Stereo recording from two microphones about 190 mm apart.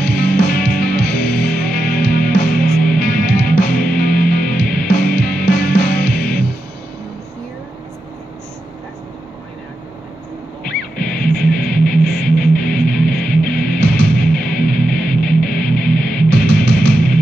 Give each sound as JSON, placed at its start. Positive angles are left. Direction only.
{"t": 0.0, "sound": "music", "side_deg": 50}
{"t": 11.0, "sound": "music", "side_deg": 50}